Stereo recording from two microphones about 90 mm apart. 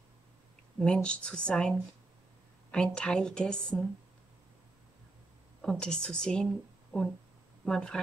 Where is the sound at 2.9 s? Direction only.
10° left (ahead or behind).